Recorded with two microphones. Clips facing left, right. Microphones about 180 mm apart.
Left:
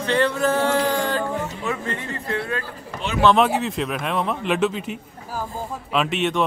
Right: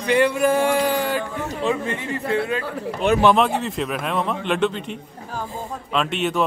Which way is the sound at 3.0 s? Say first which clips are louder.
Right 9 dB; 55° right (ahead or behind).